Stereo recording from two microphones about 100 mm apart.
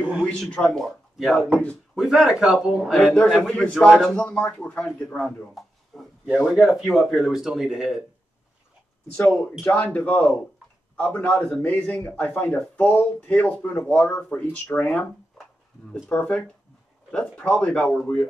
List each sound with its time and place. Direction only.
0.4 s a man's voice: 5° left (ahead or behind)
9.1 s speech: 10° left (ahead or behind)